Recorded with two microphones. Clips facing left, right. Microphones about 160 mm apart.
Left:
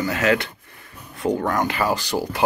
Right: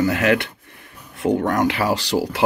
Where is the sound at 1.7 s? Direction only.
75° right (ahead or behind).